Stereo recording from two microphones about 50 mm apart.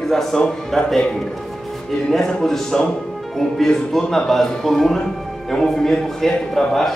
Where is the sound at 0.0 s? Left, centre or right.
Centre.